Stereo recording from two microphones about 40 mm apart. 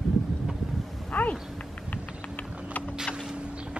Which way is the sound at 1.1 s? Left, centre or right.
Left.